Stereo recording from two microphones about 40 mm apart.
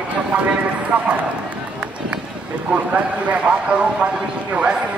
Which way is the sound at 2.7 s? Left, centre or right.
Right.